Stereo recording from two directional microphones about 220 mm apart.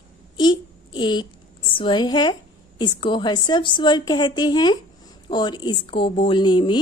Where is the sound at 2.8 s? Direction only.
20° left (ahead or behind).